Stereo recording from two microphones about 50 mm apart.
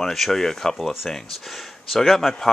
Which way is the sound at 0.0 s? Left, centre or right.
Centre.